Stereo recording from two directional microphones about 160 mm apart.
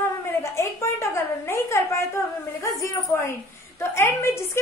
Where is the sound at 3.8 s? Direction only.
15° left (ahead or behind).